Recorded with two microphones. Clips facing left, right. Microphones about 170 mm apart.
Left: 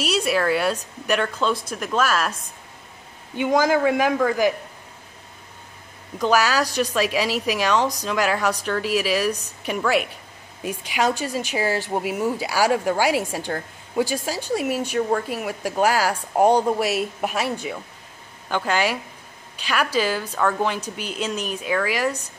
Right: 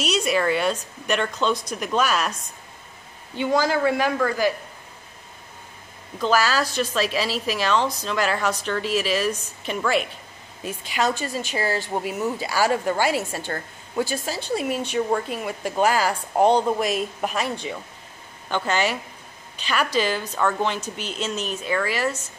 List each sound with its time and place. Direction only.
0.0 s a woman's voice: 5° left (ahead or behind)
3.3 s speech: 15° left (ahead or behind)
6.1 s speech: 15° left (ahead or behind)